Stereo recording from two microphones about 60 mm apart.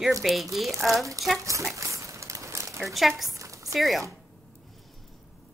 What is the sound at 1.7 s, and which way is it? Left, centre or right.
Crumpling, right.